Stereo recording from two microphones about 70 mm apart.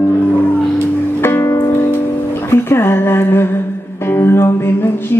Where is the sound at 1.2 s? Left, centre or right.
Left.